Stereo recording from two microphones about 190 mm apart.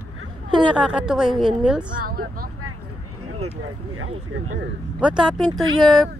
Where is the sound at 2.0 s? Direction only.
50° right (ahead or behind).